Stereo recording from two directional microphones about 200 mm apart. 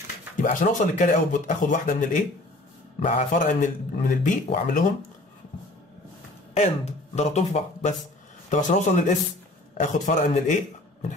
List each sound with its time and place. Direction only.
0.4 s speech: 40° left (ahead or behind)
6.5 s a man's voice: 35° left (ahead or behind)